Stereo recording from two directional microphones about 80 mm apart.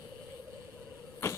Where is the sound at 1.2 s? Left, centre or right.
Left.